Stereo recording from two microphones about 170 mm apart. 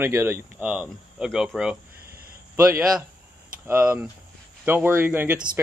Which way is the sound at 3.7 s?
10° right (ahead or behind).